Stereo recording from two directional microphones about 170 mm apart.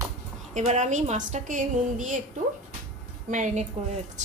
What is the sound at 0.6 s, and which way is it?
A woman's voice, 45° right (ahead or behind).